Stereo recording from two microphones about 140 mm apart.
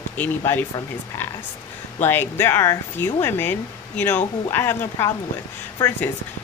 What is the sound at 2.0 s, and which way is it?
Speech, 15° left (ahead or behind).